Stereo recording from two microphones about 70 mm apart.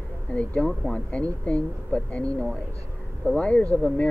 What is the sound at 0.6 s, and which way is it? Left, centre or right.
Speech, centre.